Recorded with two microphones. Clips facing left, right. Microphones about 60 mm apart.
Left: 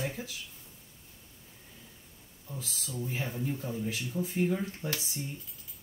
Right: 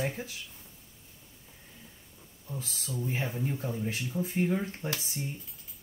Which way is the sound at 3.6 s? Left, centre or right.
Right.